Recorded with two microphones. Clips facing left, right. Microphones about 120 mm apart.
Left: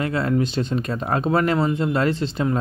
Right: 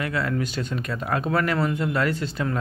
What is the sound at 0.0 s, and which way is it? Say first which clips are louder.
Speech: left 5 dB; 30° left (ahead or behind).